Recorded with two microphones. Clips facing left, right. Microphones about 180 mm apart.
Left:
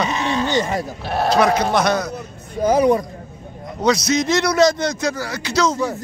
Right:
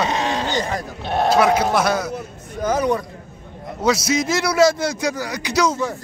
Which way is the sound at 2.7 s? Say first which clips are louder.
Left 5 dB; 30° left (ahead or behind).